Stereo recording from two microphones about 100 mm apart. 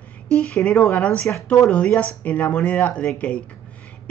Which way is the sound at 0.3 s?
10° left (ahead or behind).